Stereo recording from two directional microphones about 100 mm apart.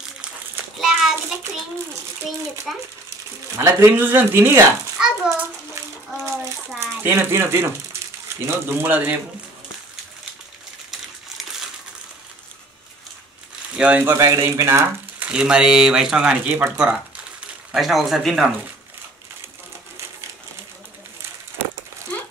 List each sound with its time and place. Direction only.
0.7 s child singing: 5° right (ahead or behind)
2.7 s speech: centre (ahead or behind)
3.5 s speech: 25° right (ahead or behind)
4.9 s a child's voice: 5° right (ahead or behind)
6.8 s speech: 25° right (ahead or behind)
13.7 s speech: 15° right (ahead or behind)
14.1 s speech: 30° right (ahead or behind)
15.1 s speech: 10° right (ahead or behind)
17.7 s speech: centre (ahead or behind)